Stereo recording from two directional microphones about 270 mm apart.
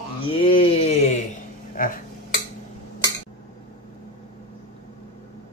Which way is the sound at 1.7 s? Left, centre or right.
Left.